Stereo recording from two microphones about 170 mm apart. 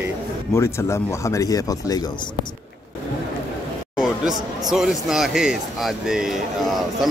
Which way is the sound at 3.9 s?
5° right (ahead or behind).